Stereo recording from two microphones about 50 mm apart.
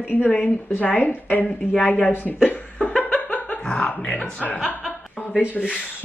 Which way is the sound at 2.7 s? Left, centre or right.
Left.